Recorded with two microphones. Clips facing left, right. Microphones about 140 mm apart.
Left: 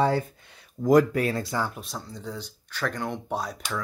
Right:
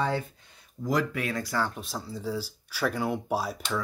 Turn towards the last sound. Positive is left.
turn(degrees=-5)  # may be behind; listen again after turning